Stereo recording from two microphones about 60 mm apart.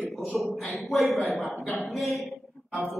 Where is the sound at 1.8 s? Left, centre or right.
Centre.